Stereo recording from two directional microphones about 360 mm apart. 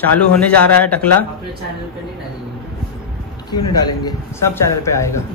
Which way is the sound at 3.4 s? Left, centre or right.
Centre.